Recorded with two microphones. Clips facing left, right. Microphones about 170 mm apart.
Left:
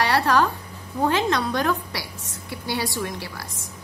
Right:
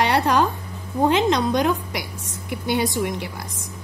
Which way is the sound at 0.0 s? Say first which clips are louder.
Right 1 dB; 20° right (ahead or behind).